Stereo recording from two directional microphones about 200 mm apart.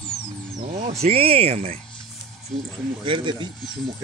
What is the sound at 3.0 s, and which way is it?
Speech, 25° right (ahead or behind).